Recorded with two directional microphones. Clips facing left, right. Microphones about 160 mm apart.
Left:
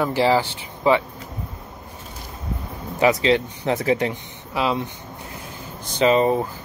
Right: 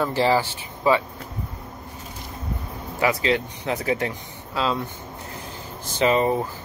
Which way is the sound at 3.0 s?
25° left (ahead or behind).